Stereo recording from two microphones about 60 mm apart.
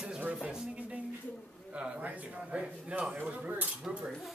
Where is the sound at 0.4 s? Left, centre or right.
Centre.